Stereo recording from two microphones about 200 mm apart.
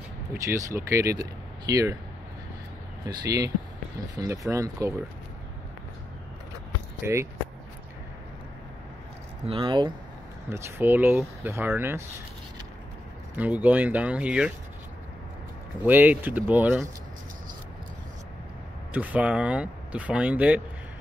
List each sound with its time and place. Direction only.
0.3 s speech: 15° right (ahead or behind)
3.3 s speech: 15° right (ahead or behind)
7.0 s speech: 15° right (ahead or behind)
9.5 s speech: 25° right (ahead or behind)
10.5 s speech: 10° right (ahead or behind)
13.4 s speech: 5° right (ahead or behind)
15.8 s speech: 10° right (ahead or behind)
18.9 s speech: 5° right (ahead or behind)